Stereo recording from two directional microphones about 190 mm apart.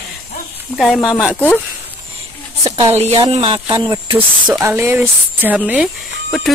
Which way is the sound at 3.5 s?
15° right (ahead or behind).